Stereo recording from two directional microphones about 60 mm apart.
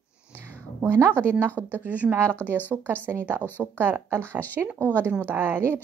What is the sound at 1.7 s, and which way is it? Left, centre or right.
Speech, right.